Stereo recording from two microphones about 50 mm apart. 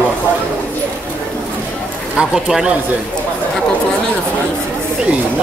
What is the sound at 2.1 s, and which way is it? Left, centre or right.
Speech, centre.